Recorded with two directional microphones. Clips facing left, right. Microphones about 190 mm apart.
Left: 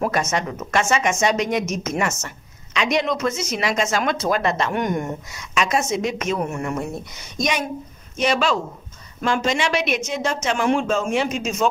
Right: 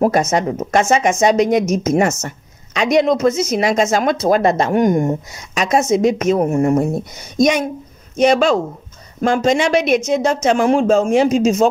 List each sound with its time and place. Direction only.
0.0 s speech: 35° right (ahead or behind)